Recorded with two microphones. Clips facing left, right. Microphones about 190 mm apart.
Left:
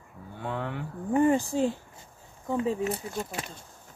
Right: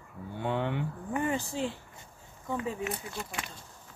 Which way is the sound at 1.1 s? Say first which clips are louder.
Left 9 dB; 40° left (ahead or behind).